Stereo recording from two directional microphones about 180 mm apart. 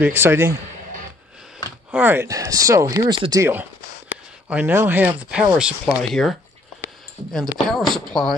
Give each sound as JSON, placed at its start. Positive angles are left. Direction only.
{"t": 0.0, "sound": "speech", "side_deg": -10}
{"t": 1.9, "sound": "speech", "side_deg": -10}
{"t": 7.6, "sound": "speech", "side_deg": 30}
{"t": 7.9, "sound": "speech", "side_deg": 0}